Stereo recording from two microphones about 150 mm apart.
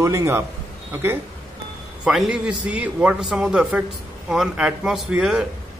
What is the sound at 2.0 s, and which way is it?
A man's voice, 5° right (ahead or behind).